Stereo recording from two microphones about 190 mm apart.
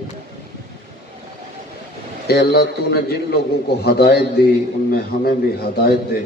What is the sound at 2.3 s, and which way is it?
A man's voice, 55° left (ahead or behind).